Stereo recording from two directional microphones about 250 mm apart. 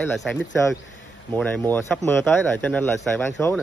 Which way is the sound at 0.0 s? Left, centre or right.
Centre.